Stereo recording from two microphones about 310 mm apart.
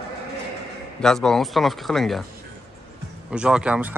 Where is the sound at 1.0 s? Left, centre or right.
Centre.